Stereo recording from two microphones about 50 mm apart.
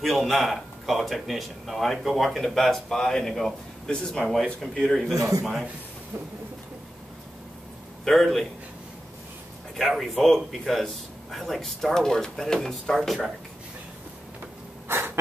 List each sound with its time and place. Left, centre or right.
0.0 s speech: centre
4.2 s speech: centre
5.4 s speech: centre
8.0 s speech: centre
9.8 s speech: centre
14.9 s a sound: right